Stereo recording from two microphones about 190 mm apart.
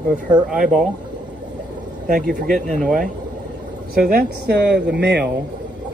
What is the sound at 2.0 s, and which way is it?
Speech, 45° right (ahead or behind).